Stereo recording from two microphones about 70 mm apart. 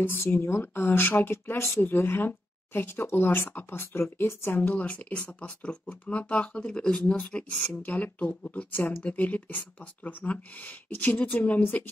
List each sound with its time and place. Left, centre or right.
0.0 s speech: left